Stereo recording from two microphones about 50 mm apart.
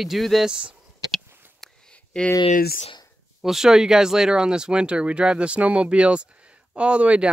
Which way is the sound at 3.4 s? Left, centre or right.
Centre.